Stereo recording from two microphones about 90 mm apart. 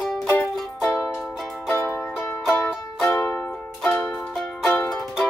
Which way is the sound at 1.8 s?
20° left (ahead or behind).